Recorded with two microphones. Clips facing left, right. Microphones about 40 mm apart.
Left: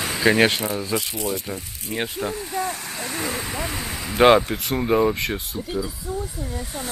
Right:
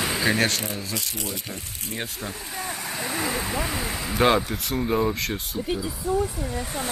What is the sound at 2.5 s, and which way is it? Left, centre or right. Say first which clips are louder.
Vehicle: left 4 dB; centre.